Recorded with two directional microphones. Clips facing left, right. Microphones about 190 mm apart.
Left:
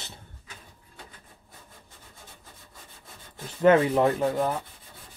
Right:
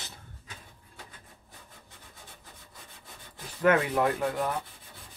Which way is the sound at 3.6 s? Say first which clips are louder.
Left 5 dB; 30° left (ahead or behind).